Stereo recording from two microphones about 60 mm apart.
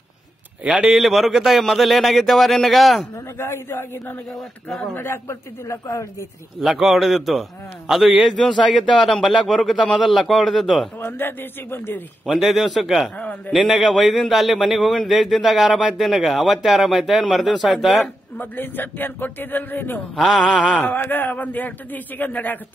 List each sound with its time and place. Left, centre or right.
0.7 s speech: centre
3.3 s a man's voice: left
5.7 s speech: left
6.6 s a man's voice: centre
11.0 s a man's voice: left
12.3 s speech: centre
18.4 s a man's voice: left
20.2 s speech: centre
20.7 s a man's voice: left